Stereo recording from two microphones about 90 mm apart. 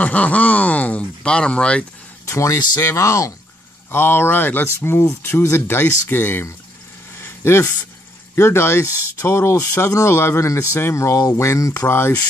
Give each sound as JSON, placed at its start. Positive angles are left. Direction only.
{"t": 0.0, "sound": "speech", "side_deg": 15}
{"t": 2.2, "sound": "speech", "side_deg": 35}
{"t": 3.9, "sound": "speech", "side_deg": 25}
{"t": 7.2, "sound": "a sound", "side_deg": 25}
{"t": 8.4, "sound": "speech", "side_deg": 30}